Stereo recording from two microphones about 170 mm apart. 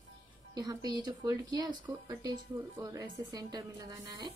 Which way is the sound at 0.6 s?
20° right (ahead or behind).